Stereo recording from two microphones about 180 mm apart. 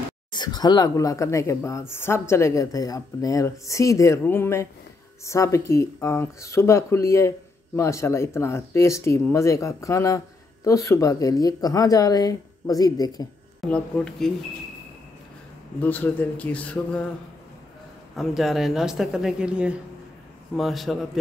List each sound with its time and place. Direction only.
0.3 s speech: 25° left (ahead or behind)
13.7 s speech: 5° left (ahead or behind)
15.8 s speech: 10° left (ahead or behind)
18.1 s speech: centre (ahead or behind)